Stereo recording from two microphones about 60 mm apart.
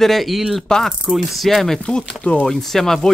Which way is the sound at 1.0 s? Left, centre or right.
Centre.